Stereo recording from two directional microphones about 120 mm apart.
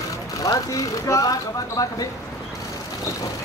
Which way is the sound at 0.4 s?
30° left (ahead or behind).